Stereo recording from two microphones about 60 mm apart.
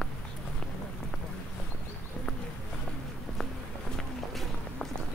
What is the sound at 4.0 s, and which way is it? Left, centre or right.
Run, centre.